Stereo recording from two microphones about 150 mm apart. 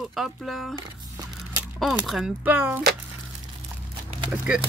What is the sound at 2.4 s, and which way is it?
Speech, 10° right (ahead or behind).